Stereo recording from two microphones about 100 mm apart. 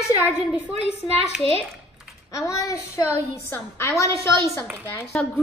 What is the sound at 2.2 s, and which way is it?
A child's voice, 30° left (ahead or behind).